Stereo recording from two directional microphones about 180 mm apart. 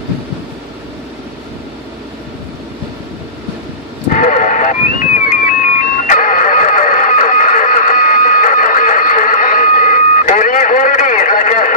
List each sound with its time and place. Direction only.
4.1 s radio: 45° left (ahead or behind)